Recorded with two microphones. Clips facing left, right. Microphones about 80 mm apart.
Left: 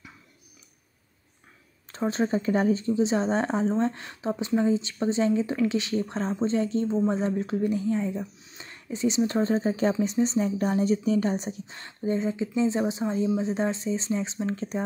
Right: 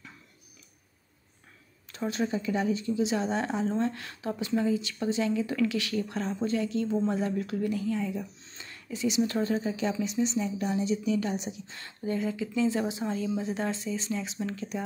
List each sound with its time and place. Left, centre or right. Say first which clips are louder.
1.9 s speech: left 4 dB; left
8.4 s a sound: left 2 dB; centre
8.6 s speech: left 4 dB; left
11.6 s speech: left 4 dB; left